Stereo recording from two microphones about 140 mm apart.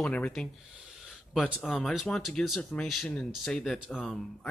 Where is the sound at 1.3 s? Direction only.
5° right (ahead or behind).